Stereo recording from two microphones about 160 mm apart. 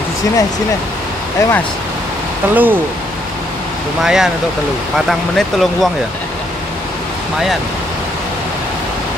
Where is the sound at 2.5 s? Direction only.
10° right (ahead or behind).